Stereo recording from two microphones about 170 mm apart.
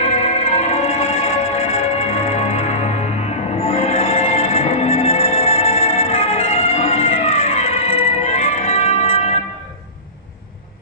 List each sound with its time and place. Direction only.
0.0 s music: 35° left (ahead or behind)